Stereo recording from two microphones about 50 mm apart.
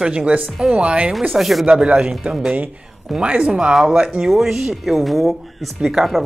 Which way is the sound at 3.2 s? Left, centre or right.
Right.